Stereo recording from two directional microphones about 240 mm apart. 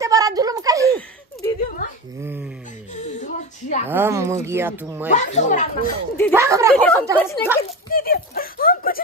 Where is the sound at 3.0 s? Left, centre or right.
Left.